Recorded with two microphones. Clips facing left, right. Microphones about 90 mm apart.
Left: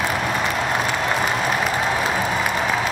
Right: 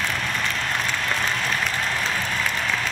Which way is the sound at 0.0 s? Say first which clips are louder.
Left 5 dB; 15° left (ahead or behind).